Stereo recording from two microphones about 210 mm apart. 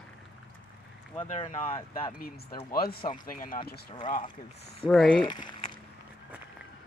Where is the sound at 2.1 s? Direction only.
45° left (ahead or behind).